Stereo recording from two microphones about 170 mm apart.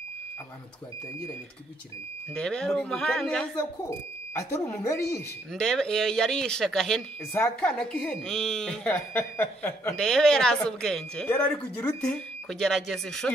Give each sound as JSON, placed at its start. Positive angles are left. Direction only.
{"t": 2.3, "sound": "speech", "side_deg": 5}
{"t": 4.4, "sound": "speech", "side_deg": 15}
{"t": 5.5, "sound": "speech", "side_deg": 5}